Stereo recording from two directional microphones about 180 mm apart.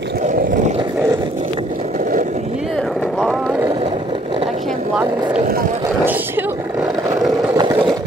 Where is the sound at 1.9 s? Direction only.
50° right (ahead or behind).